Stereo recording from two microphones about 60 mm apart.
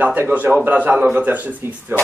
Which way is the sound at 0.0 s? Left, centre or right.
Right.